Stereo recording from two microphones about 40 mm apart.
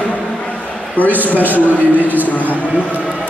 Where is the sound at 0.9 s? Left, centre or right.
Left.